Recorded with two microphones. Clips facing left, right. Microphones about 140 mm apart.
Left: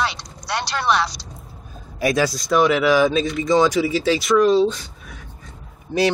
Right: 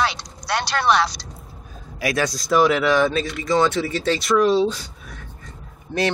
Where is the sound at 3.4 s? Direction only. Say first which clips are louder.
Left 2 dB; 20° left (ahead or behind).